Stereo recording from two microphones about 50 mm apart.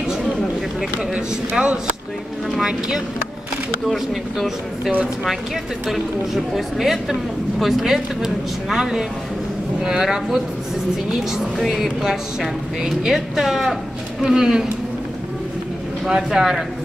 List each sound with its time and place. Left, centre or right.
1.6 s speech: centre
3.9 s speech: centre
16.3 s speech: centre